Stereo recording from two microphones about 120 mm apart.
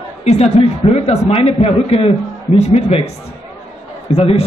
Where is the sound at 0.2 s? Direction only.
65° left (ahead or behind).